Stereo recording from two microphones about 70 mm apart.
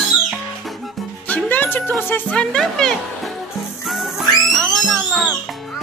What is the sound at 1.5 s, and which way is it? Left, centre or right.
Music, left.